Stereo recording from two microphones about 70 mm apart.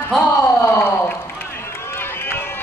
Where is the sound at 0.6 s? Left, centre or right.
Left.